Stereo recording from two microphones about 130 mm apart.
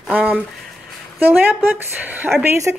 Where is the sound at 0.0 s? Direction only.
10° right (ahead or behind).